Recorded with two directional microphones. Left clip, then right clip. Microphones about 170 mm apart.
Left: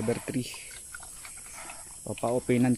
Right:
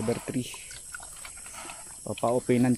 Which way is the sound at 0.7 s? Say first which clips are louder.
Right 2 dB; 45° right (ahead or behind).